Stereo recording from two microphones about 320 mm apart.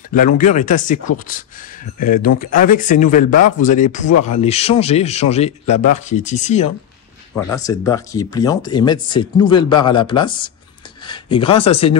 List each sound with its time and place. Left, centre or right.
0.1 s speech: left
7.3 s speech: centre